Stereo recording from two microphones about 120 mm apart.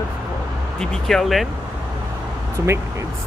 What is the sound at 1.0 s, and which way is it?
Speech, centre (ahead or behind).